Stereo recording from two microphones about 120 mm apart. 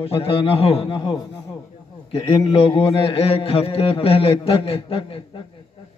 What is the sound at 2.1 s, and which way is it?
A man's voice, 50° left (ahead or behind).